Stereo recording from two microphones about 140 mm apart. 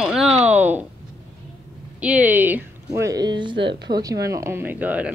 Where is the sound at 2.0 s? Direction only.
10° right (ahead or behind).